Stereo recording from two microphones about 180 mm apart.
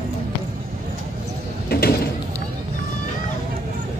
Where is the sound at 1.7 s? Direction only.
60° left (ahead or behind).